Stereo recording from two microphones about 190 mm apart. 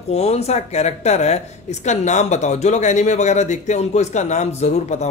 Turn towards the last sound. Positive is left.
turn(degrees=35)  # may be behind; listen again after turning